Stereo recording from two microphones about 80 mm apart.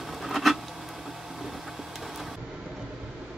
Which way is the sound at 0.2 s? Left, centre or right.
Centre.